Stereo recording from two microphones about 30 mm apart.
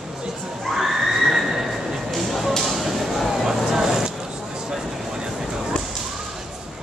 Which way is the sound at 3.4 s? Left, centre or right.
Centre.